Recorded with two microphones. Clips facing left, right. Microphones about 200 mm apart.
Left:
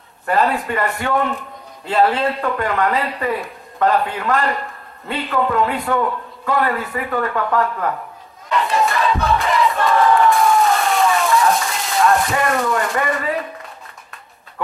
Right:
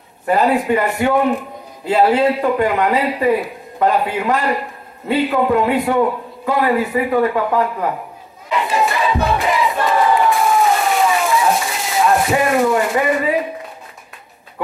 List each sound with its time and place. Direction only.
0.3 s a man's voice: 15° right (ahead or behind)
8.5 s battle cry: 5° right (ahead or behind)
9.8 s a sound: 10° right (ahead or behind)